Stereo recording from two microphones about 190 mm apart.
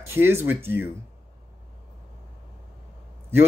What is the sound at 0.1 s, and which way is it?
Speech, 10° right (ahead or behind).